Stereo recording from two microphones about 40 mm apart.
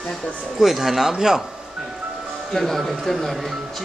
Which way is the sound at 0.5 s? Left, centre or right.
Centre.